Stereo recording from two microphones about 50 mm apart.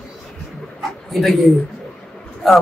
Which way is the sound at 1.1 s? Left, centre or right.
Centre.